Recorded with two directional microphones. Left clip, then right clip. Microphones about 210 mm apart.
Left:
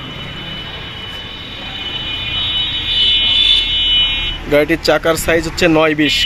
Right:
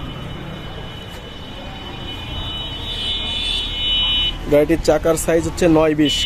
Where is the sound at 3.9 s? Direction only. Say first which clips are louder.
Right 1 dB; 30° right (ahead or behind).